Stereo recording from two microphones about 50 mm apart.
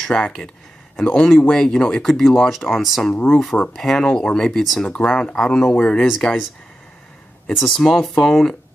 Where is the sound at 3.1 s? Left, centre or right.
Left.